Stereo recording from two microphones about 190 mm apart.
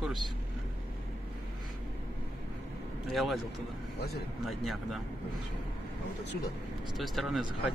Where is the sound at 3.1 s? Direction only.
Centre (ahead or behind).